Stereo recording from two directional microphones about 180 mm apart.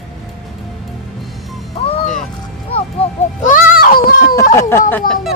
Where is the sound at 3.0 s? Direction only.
35° left (ahead or behind).